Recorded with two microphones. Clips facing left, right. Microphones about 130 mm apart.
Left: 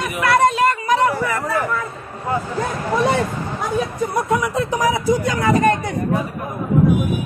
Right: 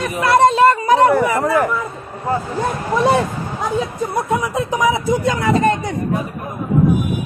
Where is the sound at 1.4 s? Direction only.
55° right (ahead or behind).